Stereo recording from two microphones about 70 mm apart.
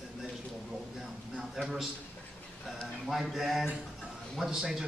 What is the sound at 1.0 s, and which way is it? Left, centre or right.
Speech, centre.